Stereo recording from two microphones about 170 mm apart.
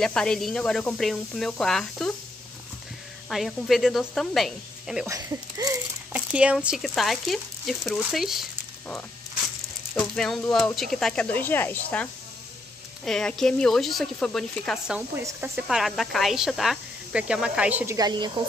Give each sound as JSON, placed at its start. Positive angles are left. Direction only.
{"t": 0.0, "sound": "speech", "side_deg": 5}
{"t": 3.3, "sound": "speech", "side_deg": 0}
{"t": 5.0, "sound": "speech", "side_deg": -20}
{"t": 6.1, "sound": "speech", "side_deg": -5}
{"t": 15.0, "sound": "a woman's voice", "side_deg": -15}
{"t": 15.6, "sound": "speech", "side_deg": 0}
{"t": 17.9, "sound": "a woman's voice", "side_deg": -25}